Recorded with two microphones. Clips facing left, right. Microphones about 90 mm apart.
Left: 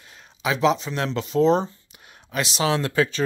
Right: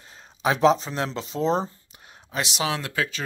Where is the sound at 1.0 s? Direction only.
25° right (ahead or behind).